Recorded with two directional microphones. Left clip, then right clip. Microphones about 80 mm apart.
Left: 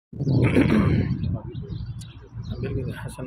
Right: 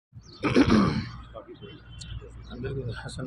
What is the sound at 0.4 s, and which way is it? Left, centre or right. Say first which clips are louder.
Grunt: even; right.